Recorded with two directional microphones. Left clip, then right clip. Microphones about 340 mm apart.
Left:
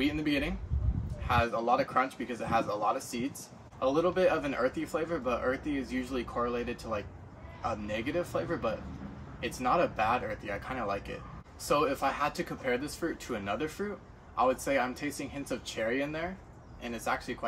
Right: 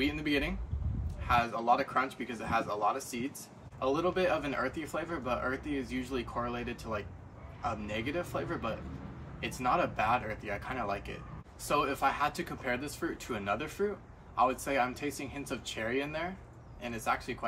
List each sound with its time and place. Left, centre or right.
0.0 s speech: centre